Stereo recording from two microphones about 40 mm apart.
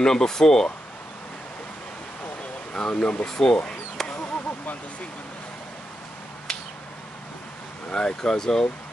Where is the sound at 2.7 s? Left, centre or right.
Left.